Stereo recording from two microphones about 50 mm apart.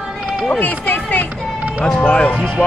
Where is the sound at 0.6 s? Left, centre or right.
Left.